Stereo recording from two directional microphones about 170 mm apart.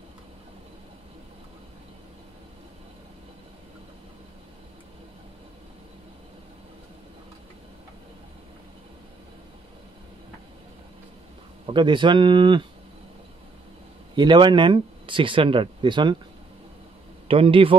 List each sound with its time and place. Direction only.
11.6 s speech: 30° right (ahead or behind)
14.1 s speech: 25° right (ahead or behind)
17.3 s speech: 35° right (ahead or behind)